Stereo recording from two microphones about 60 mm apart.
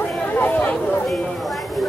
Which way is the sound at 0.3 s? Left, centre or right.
Left.